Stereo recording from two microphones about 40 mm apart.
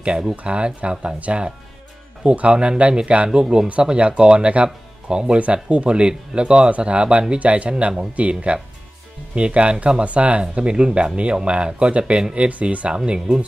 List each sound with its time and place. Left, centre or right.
0.4 s speech: right
3.8 s speech: right
5.4 s speech: right
12.2 s speech: centre
12.4 s speech: right